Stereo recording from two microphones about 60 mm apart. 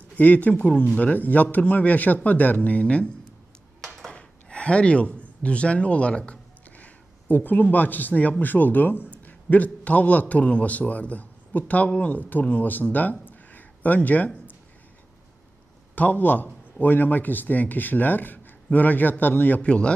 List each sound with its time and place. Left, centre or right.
0.1 s speech: left
3.8 s a sound: centre
4.1 s a sound: centre
7.7 s a man's voice: left
15.9 s speech: left
19.6 s speech: centre